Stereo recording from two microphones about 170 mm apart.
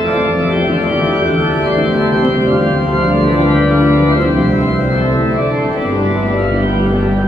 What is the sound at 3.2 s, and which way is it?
Organ, centre (ahead or behind).